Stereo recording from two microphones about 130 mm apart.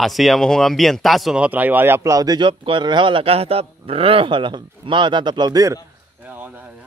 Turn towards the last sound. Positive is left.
turn(degrees=-15)  # may be behind; listen again after turning